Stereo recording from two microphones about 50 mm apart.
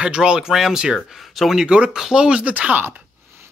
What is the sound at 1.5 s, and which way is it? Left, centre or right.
Speech, right.